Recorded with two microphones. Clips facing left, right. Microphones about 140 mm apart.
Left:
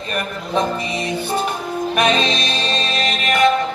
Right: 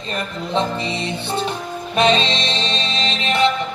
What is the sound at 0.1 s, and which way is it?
Music, 25° right (ahead or behind).